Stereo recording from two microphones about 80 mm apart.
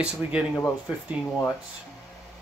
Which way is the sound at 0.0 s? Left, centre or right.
Centre.